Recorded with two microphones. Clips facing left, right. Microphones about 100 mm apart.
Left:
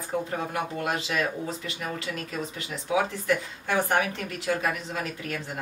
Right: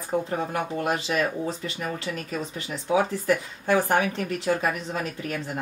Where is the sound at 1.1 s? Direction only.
40° right (ahead or behind).